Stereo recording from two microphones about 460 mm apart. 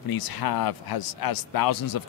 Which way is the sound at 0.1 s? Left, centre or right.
Left.